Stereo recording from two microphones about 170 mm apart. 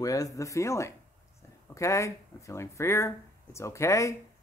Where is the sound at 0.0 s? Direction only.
20° left (ahead or behind).